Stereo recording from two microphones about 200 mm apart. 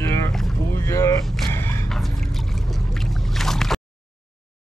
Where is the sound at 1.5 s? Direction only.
10° left (ahead or behind).